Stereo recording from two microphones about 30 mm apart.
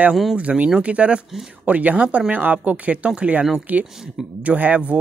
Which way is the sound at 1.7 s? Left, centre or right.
Right.